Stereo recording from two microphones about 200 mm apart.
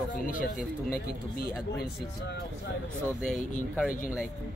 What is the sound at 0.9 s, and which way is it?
Speech, 45° left (ahead or behind).